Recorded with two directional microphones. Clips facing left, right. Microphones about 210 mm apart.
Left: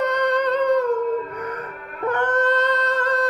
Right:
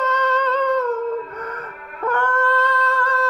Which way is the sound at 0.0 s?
15° left (ahead or behind).